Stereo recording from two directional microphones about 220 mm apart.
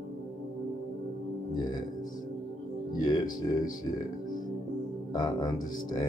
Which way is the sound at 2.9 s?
15° left (ahead or behind).